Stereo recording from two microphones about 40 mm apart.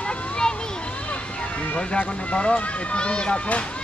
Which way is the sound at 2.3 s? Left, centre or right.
Left.